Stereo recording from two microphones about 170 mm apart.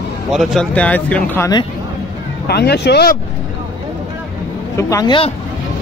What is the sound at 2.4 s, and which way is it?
Speech, 70° left (ahead or behind).